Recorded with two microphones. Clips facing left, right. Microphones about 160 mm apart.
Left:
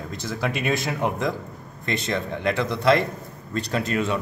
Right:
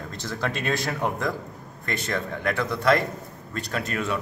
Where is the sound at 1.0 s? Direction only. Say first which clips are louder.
Left 2 dB; 20° left (ahead or behind).